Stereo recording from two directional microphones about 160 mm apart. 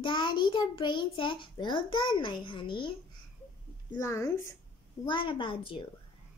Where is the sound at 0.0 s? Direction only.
30° left (ahead or behind).